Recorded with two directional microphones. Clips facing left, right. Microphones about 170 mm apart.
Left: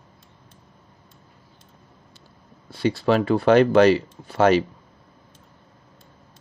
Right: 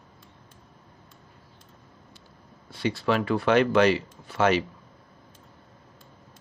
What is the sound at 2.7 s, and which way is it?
Speech, 35° left (ahead or behind).